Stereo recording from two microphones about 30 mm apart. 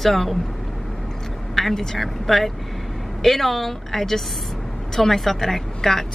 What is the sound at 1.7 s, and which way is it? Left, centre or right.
Speech, centre.